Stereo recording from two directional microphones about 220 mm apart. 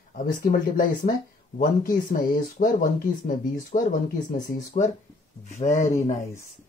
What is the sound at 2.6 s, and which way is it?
Speech, 40° left (ahead or behind).